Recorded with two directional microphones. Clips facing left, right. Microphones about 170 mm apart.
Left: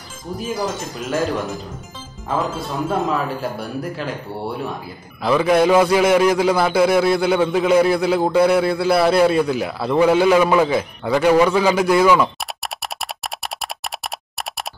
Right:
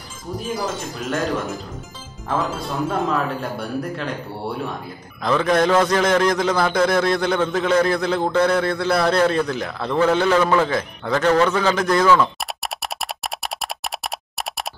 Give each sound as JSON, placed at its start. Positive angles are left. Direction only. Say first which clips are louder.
{"t": 0.4, "sound": "speech", "louder": "left 2 dB", "side_deg": 0}
{"t": 2.9, "sound": "speech", "louder": "left 2 dB", "side_deg": 0}
{"t": 5.2, "sound": "a man's voice", "louder": "left 3 dB", "side_deg": 10}
{"t": 12.6, "sound": "a sound", "louder": "right 1 dB", "side_deg": 0}
{"t": 14.0, "sound": "computer keyboard", "louder": "right 1 dB", "side_deg": 0}